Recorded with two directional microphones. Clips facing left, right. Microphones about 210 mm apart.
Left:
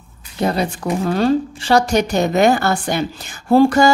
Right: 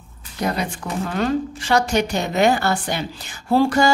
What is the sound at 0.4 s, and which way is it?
A woman's voice, 30° left (ahead or behind).